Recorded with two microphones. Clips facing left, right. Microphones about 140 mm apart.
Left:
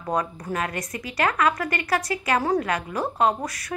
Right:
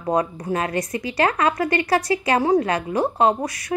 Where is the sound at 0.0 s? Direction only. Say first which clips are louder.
Right 5 dB; 25° right (ahead or behind).